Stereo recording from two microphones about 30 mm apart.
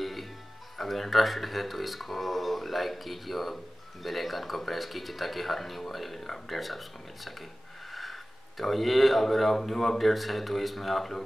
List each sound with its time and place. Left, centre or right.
0.0 s music: centre
0.7 s speech: centre
7.9 s a sound: centre
9.7 s speech: centre